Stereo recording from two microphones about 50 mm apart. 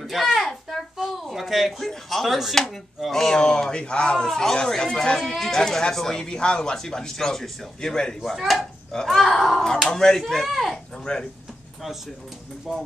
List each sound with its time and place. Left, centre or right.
0.0 s a sound: centre
0.9 s speech: centre
4.3 s speech: centre
8.4 s speech: centre
11.1 s speech: centre
12.7 s speech: centre